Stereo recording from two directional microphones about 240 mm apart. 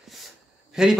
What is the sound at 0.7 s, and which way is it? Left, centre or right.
Speech, centre.